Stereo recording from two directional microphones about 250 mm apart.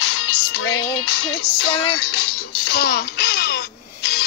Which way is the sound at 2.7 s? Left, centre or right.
Left.